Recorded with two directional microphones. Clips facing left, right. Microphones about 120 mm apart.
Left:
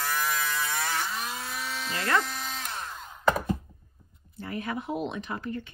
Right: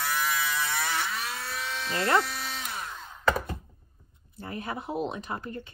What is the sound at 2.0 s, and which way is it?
Speech, 30° right (ahead or behind).